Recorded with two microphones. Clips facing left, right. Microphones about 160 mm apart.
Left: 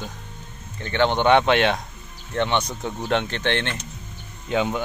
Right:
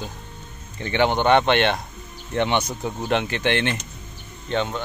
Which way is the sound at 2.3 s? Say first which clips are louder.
Right 1 dB; 10° right (ahead or behind).